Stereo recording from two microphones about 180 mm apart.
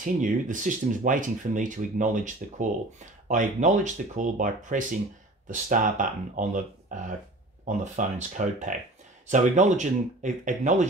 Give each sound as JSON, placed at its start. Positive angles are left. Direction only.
{"t": 0.0, "sound": "speech", "side_deg": -45}